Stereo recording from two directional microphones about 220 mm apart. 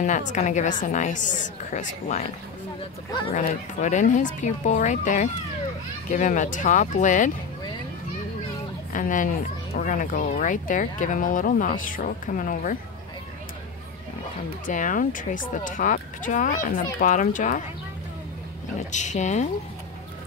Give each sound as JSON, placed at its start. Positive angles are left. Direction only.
{"t": 0.0, "sound": "speech", "side_deg": 35}
{"t": 3.1, "sound": "speech", "side_deg": 20}
{"t": 3.3, "sound": "speech", "side_deg": 35}
{"t": 8.9, "sound": "speech", "side_deg": 35}
{"t": 14.7, "sound": "speech", "side_deg": 35}
{"t": 18.9, "sound": "speech", "side_deg": 35}